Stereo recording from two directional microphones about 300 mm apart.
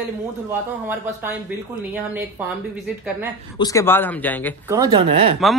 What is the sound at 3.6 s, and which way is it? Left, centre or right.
Speech, centre.